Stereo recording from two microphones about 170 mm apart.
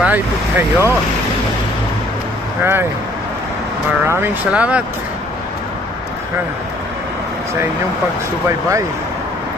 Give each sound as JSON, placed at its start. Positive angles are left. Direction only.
{"t": 0.0, "sound": "speech", "side_deg": -10}
{"t": 2.6, "sound": "speech", "side_deg": -15}
{"t": 4.0, "sound": "speech", "side_deg": -15}
{"t": 8.5, "sound": "speech", "side_deg": -15}